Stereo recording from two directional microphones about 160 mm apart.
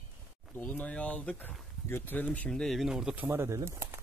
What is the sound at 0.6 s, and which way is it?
Speech, 10° left (ahead or behind).